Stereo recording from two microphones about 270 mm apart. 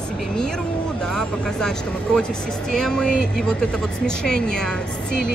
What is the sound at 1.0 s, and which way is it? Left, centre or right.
Speech, centre.